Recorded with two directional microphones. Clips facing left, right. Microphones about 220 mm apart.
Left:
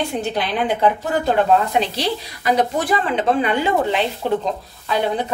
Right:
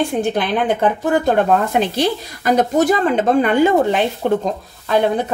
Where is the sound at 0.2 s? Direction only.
50° right (ahead or behind).